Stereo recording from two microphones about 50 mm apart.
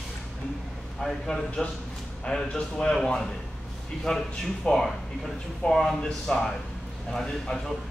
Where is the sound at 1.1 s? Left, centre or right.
Centre.